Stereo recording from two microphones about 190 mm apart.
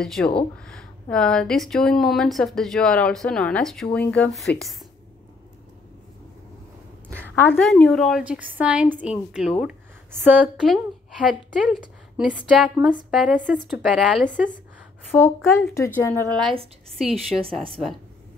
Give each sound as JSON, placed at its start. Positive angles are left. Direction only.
{"t": 0.0, "sound": "speech", "side_deg": 5}
{"t": 7.3, "sound": "a woman's voice", "side_deg": 10}
{"t": 14.2, "sound": "speech", "side_deg": 40}
{"t": 15.0, "sound": "a woman's voice", "side_deg": 15}
{"t": 16.3, "sound": "speech", "side_deg": -25}